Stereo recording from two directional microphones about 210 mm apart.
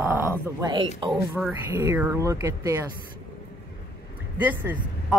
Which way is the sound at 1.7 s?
10° right (ahead or behind).